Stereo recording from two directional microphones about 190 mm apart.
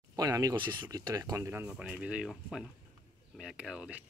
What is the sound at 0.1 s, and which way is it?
Speech, 20° right (ahead or behind).